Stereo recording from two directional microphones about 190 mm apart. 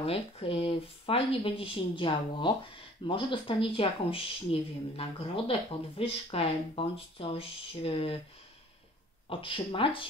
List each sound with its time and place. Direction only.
0.0 s speech: 30° left (ahead or behind)
9.3 s speech: 25° left (ahead or behind)